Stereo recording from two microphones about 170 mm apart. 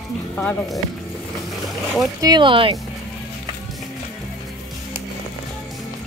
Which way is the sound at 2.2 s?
25° right (ahead or behind).